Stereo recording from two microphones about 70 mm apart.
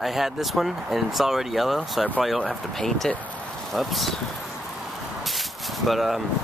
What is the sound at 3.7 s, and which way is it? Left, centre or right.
Speech, centre.